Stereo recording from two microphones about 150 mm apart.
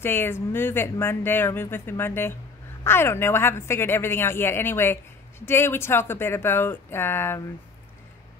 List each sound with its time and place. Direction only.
0.0 s speech: 15° left (ahead or behind)